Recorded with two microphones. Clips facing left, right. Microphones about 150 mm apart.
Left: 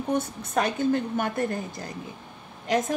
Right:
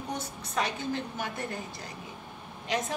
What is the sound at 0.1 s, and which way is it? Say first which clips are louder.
Speech: left 9 dB; 50° left (ahead or behind).